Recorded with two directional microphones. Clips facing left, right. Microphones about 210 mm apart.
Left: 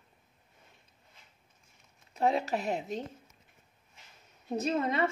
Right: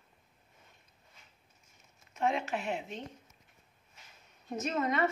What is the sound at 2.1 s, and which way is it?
Speech, 35° left (ahead or behind).